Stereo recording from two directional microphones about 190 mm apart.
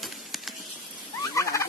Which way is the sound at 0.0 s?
Centre (ahead or behind).